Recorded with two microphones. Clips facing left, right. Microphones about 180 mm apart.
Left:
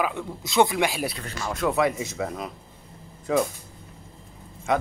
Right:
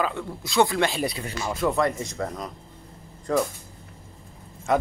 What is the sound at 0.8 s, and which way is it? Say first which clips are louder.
Speech: right 1 dB; 5° left (ahead or behind).